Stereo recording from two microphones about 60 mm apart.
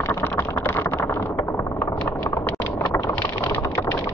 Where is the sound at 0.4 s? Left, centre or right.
Left.